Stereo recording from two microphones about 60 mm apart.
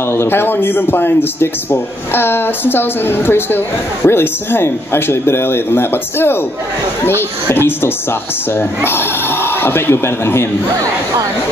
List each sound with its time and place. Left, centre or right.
0.1 s speech: left